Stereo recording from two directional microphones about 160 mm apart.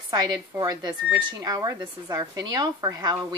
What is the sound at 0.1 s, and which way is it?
Speech, 25° right (ahead or behind).